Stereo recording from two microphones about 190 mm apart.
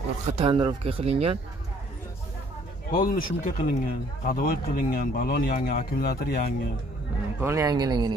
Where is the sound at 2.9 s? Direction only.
45° left (ahead or behind).